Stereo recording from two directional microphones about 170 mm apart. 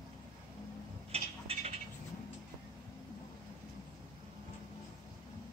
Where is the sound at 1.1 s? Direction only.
35° right (ahead or behind).